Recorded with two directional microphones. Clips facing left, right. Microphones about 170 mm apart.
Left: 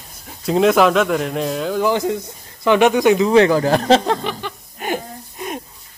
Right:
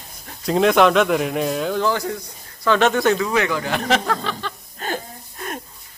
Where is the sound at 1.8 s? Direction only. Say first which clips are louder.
Left 4 dB; 20° left (ahead or behind); by 4.0 s 35° left (ahead or behind).